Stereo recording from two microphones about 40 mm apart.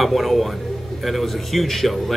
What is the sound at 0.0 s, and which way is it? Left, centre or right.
A man's voice, centre.